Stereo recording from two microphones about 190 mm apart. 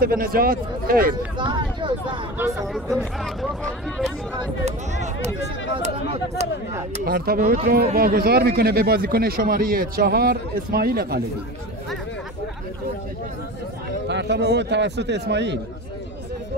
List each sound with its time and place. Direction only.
0.0 s speech: 50° right (ahead or behind)
1.4 s speech: 25° right (ahead or behind)
2.7 s speech: centre (ahead or behind)
4.6 s speech: 35° right (ahead or behind)
7.1 s speech: 55° right (ahead or behind)
14.0 s a man's voice: 65° right (ahead or behind)